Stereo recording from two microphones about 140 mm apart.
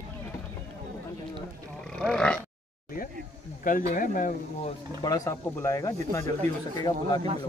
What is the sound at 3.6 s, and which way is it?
Speech, 75° left (ahead or behind).